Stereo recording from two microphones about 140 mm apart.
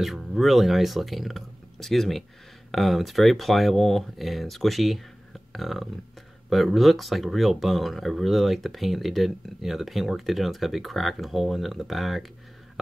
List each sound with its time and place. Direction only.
0.0 s speech: centre (ahead or behind)